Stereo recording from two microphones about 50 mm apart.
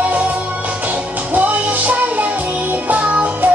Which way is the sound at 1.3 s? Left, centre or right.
Right.